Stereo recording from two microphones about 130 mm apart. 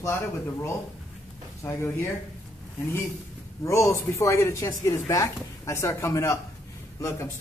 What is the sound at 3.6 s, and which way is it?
Speech, 20° left (ahead or behind).